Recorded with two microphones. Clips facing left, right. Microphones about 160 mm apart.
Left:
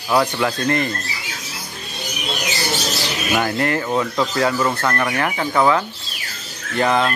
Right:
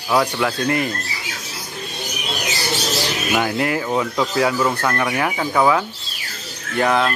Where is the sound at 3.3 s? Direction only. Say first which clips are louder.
Left 1 dB; 5° right (ahead or behind).